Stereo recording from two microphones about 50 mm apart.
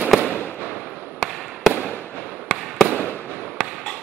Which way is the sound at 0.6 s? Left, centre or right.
Right.